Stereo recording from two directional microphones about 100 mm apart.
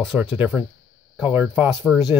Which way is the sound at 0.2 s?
15° right (ahead or behind).